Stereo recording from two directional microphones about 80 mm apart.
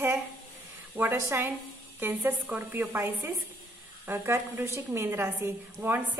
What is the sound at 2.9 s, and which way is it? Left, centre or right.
A woman's voice, right.